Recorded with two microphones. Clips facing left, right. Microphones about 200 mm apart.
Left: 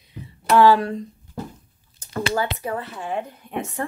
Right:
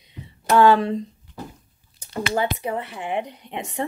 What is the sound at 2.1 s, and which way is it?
Speech, 20° right (ahead or behind).